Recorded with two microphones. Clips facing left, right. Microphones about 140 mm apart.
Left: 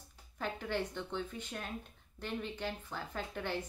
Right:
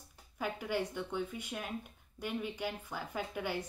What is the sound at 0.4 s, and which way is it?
Speech, 10° right (ahead or behind).